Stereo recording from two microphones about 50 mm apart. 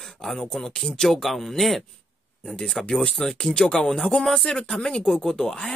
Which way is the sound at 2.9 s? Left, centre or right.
Centre.